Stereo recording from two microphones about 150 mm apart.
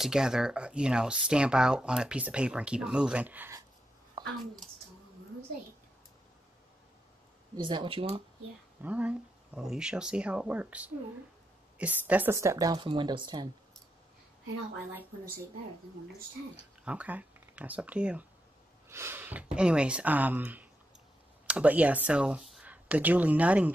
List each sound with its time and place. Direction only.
0.0 s speech: 5° right (ahead or behind)
4.2 s a sound: 30° right (ahead or behind)
7.5 s speech: 30° right (ahead or behind)
8.8 s speech: 10° right (ahead or behind); by 13.5 s 30° right (ahead or behind)
16.8 s speech: 10° right (ahead or behind)